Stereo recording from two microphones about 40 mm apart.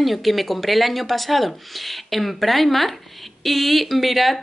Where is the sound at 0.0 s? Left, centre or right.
Centre.